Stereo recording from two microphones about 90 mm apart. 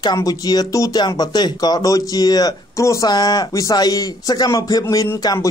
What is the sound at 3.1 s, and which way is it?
Speech, 50° left (ahead or behind).